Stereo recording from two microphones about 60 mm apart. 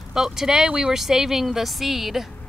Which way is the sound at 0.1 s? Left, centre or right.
Centre.